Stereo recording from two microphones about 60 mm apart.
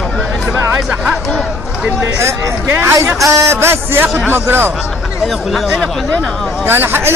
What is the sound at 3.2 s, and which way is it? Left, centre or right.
Speech, right.